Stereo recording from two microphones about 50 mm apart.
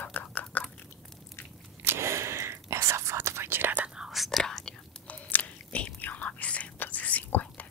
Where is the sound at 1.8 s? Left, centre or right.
Right.